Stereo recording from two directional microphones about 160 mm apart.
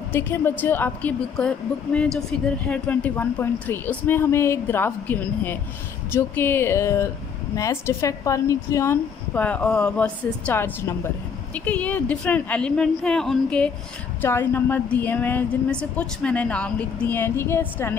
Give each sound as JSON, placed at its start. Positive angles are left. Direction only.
{"t": 0.1, "sound": "speech", "side_deg": 15}